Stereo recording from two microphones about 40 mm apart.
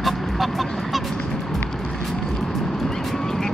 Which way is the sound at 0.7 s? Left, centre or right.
Centre.